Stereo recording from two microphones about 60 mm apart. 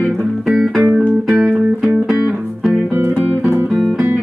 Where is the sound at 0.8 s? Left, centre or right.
Centre.